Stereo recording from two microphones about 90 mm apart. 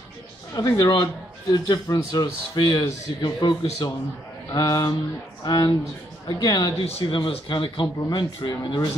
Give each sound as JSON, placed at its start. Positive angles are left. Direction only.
{"t": 0.6, "sound": "speech", "side_deg": 35}
{"t": 0.8, "sound": "speech", "side_deg": 50}
{"t": 6.8, "sound": "speech", "side_deg": 70}